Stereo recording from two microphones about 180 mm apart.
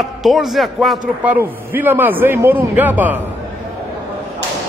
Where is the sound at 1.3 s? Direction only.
10° right (ahead or behind).